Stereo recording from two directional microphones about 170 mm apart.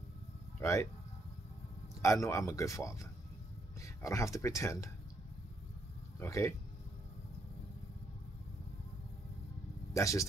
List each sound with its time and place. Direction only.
0.6 s speech: 15° left (ahead or behind)
2.0 s speech: 15° left (ahead or behind)
6.1 s speech: 15° left (ahead or behind)
9.9 s speech: 20° left (ahead or behind)